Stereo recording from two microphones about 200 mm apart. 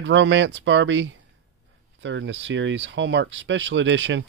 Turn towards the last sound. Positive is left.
turn(degrees=-65)  # may be behind; listen again after turning